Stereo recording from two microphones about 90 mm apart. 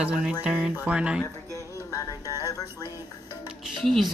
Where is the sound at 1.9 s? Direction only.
40° left (ahead or behind).